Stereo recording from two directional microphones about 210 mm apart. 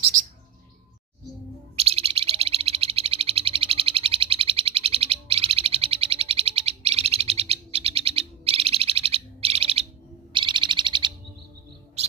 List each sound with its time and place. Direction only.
1.8 s bird: 30° right (ahead or behind)
10.3 s owl: 20° right (ahead or behind)